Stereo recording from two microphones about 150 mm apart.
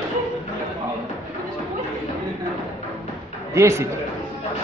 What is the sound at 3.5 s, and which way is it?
Speech, 20° right (ahead or behind).